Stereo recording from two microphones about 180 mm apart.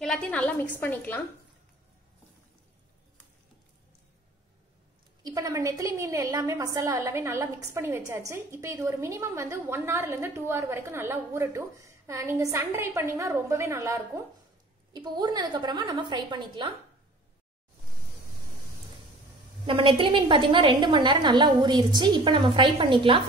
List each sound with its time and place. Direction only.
0.0 s a woman's voice: 5° left (ahead or behind)
5.2 s a woman's voice: 20° right (ahead or behind)
19.6 s a woman's voice: 30° right (ahead or behind)